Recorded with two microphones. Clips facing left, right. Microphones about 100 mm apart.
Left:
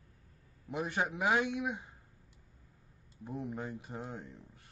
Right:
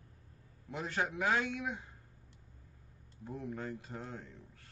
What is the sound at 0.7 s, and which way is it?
Speech, 15° left (ahead or behind).